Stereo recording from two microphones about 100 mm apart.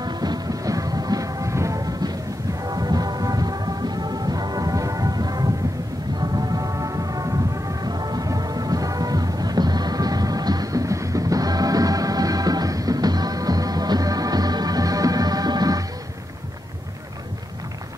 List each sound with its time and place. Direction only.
0.0 s music: 45° right (ahead or behind)